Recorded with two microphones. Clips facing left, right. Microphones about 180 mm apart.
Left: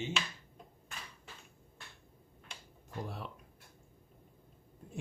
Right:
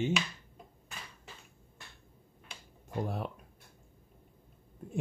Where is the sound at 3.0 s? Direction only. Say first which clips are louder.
Right 8 dB; 50° right (ahead or behind).